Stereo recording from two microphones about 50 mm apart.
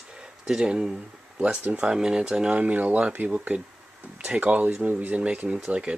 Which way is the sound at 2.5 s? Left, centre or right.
Right.